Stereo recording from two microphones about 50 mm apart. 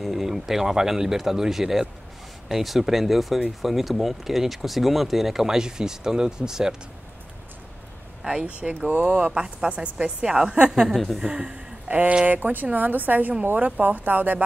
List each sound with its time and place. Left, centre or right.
0.0 s a woman's voice: centre
8.2 s a woman's voice: centre
11.9 s a woman's voice: right